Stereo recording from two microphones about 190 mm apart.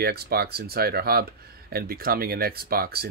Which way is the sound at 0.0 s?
55° right (ahead or behind).